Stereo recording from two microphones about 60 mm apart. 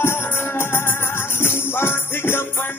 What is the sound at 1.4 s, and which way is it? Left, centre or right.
Music, left.